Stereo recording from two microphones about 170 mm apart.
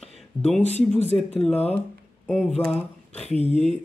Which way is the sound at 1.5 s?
40° left (ahead or behind).